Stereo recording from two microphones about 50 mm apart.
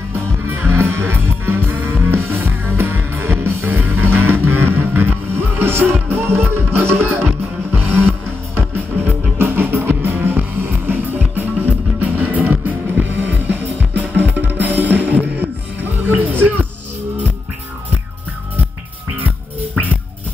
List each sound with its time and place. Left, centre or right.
0.1 s music: right
3.6 s music: right
7.2 s music: right
8.5 s music: right